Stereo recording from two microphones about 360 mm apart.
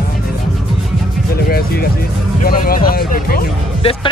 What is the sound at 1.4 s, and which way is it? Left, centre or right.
Music, left.